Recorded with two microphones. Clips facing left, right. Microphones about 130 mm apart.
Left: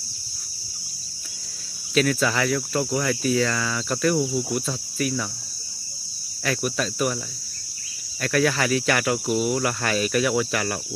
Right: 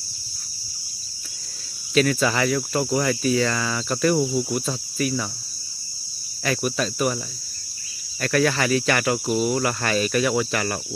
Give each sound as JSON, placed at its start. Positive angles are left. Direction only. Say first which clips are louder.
{"t": 2.0, "sound": "speech", "louder": "right 2 dB", "side_deg": 0}
{"t": 6.4, "sound": "speech", "louder": "right 1 dB", "side_deg": 0}
{"t": 8.2, "sound": "speech", "louder": "right 1 dB", "side_deg": 0}